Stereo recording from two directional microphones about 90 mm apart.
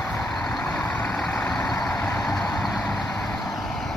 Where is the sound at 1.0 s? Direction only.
10° left (ahead or behind).